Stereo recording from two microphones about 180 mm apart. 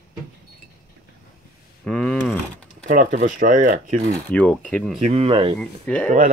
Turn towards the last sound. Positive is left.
turn(degrees=5)  # may be behind; listen again after turning